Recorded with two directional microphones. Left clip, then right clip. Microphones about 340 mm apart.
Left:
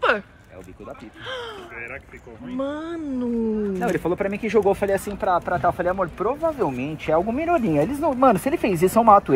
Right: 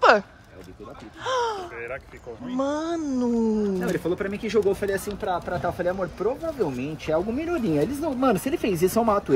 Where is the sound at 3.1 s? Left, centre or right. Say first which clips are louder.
Even; centre.